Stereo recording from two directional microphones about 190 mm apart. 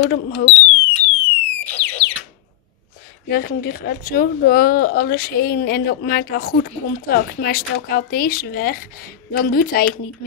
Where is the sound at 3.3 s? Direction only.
50° left (ahead or behind).